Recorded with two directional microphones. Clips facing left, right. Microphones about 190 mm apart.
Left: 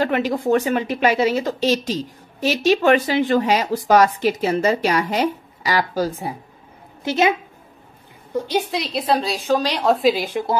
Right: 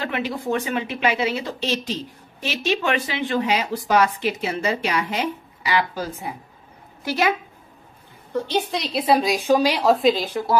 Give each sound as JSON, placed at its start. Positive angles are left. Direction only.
{"t": 0.0, "sound": "speech", "side_deg": 40}
{"t": 7.1, "sound": "a woman's voice", "side_deg": 25}
{"t": 8.3, "sound": "a woman's voice", "side_deg": 10}
{"t": 10.1, "sound": "speech", "side_deg": 15}